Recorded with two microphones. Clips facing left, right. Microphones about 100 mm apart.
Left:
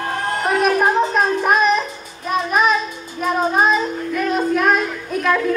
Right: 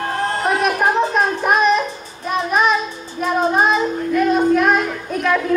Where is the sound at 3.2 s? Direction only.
Centre (ahead or behind).